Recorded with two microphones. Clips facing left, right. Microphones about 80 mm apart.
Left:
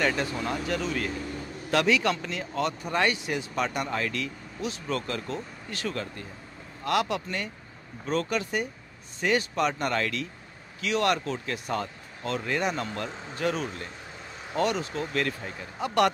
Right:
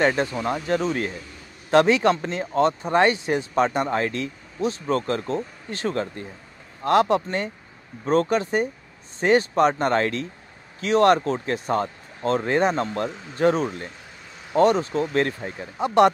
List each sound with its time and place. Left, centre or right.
0.0 s speech: right